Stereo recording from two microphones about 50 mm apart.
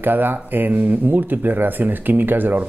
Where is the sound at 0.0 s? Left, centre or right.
Right.